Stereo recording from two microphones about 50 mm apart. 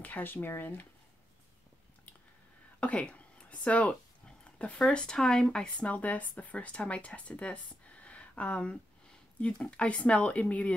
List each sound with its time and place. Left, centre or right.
0.0 s speech: left
2.8 s a sound: left
4.5 s speech: left
5.9 s speech: left